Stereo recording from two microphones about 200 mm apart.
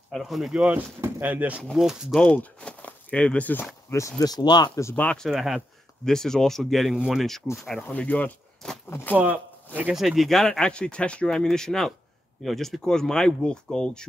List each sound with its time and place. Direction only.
0.1 s speech: centre (ahead or behind)
9.1 s speech: 10° right (ahead or behind)